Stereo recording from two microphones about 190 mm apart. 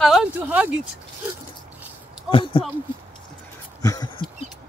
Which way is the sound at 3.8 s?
20° left (ahead or behind).